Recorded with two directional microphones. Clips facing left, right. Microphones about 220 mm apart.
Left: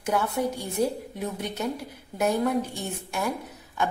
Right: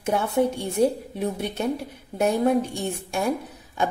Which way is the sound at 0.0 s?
25° right (ahead or behind).